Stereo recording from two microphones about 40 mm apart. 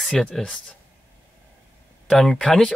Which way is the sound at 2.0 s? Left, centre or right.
Centre.